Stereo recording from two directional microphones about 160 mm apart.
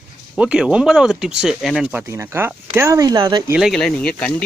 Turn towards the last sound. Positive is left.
turn(degrees=5)  # may be behind; listen again after turning